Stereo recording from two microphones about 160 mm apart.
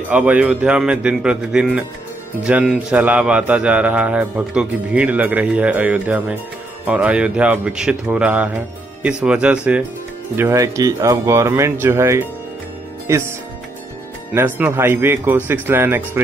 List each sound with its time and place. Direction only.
0.1 s a man's voice: 10° right (ahead or behind)
14.3 s a man's voice: 15° right (ahead or behind)